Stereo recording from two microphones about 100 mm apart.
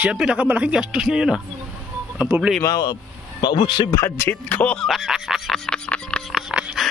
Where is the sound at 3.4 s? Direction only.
55° left (ahead or behind).